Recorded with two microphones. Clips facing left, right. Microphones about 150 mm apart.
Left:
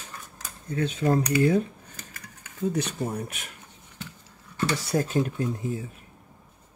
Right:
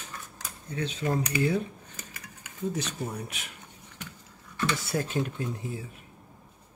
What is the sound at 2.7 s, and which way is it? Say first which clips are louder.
Speech: left 5 dB; 55° left (ahead or behind).